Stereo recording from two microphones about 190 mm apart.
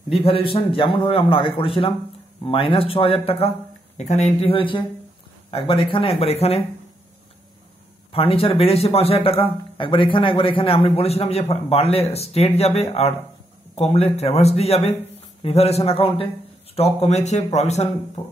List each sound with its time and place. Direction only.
0.2 s speech: 30° left (ahead or behind)
8.1 s a man's voice: 30° left (ahead or behind)